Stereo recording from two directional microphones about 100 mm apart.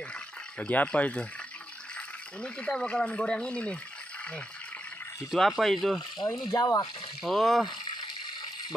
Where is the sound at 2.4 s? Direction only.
10° left (ahead or behind).